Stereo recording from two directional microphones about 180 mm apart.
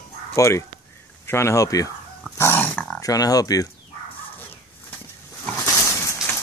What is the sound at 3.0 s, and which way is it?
Speech, 20° left (ahead or behind).